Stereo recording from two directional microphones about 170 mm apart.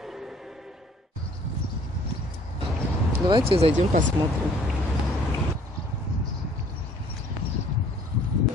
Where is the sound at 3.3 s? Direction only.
35° right (ahead or behind).